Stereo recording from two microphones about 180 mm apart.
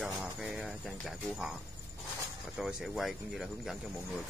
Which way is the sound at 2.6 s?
Centre (ahead or behind).